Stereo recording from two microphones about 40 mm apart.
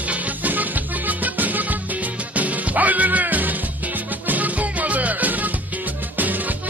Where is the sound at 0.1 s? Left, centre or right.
Right.